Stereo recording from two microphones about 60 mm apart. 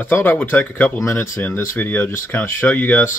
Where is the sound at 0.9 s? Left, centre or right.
Left.